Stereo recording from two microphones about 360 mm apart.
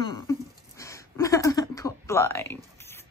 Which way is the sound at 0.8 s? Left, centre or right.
Centre.